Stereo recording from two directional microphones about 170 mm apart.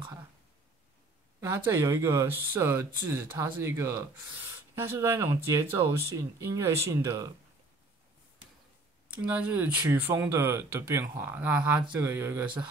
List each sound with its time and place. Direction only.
1.4 s speech: 15° right (ahead or behind)
9.1 s speech: 10° right (ahead or behind)